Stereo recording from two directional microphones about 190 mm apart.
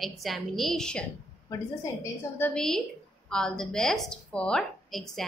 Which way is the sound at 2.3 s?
5° left (ahead or behind).